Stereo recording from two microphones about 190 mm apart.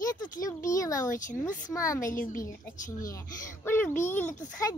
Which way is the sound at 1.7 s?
15° left (ahead or behind).